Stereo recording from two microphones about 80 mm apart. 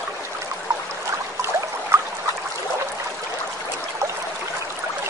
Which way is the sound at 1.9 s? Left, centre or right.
Right.